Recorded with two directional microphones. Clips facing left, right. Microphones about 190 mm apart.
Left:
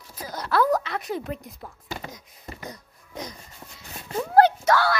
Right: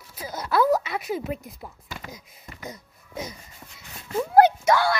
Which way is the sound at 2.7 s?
10° right (ahead or behind).